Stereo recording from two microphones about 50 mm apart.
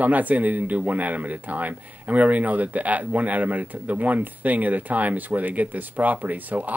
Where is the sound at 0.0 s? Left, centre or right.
Right.